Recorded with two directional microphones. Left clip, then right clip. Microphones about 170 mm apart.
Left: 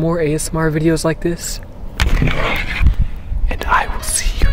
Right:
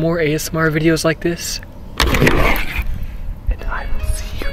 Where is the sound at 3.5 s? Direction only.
50° left (ahead or behind).